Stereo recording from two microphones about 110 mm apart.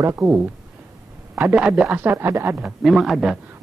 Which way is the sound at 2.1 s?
25° right (ahead or behind).